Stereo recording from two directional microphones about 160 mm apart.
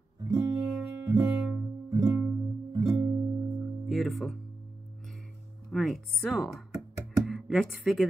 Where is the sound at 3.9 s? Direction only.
Centre (ahead or behind).